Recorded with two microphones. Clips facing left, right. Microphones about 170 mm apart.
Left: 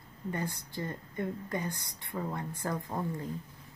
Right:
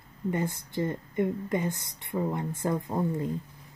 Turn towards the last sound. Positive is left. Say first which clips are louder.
# right 6 dB
turn(degrees=-25)  # may be behind; listen again after turning